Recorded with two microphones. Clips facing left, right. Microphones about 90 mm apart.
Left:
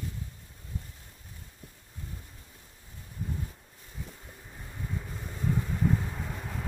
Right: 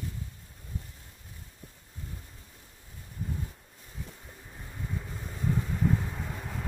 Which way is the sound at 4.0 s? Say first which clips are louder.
Even; centre (ahead or behind).